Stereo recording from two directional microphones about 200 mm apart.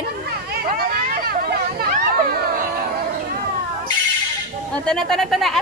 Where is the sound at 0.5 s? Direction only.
50° right (ahead or behind).